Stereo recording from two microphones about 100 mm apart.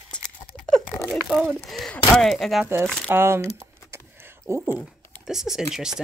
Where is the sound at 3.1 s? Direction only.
25° right (ahead or behind).